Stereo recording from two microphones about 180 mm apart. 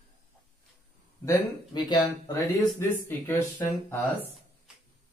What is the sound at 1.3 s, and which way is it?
Speech, 20° left (ahead or behind).